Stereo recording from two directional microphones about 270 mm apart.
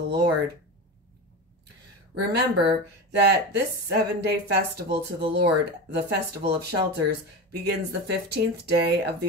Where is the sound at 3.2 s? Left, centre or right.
Right.